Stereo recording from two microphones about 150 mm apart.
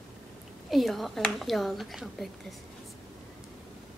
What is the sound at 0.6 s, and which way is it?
A woman's voice, centre (ahead or behind).